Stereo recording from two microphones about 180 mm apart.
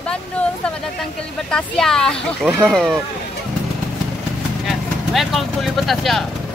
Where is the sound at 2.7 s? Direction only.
Centre (ahead or behind).